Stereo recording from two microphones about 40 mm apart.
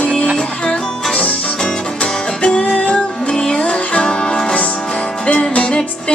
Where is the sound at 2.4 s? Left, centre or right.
Left.